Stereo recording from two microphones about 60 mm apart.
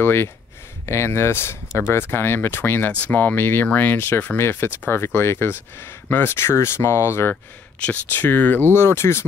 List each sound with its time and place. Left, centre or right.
0.0 s speech: left
2.9 s speech: left
6.3 s speech: left
7.8 s speech: left
8.7 s speech: left